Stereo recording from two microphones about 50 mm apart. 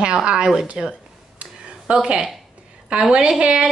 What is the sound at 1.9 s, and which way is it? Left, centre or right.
Speech, centre.